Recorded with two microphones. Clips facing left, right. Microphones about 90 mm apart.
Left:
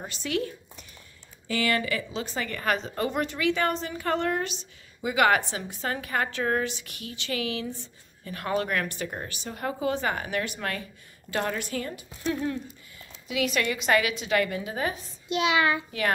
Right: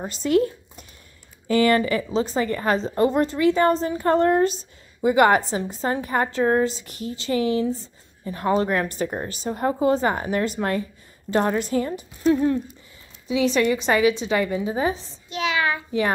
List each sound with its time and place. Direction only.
0.0 s a woman's voice: 35° right (ahead or behind); by 15.0 s 20° right (ahead or behind)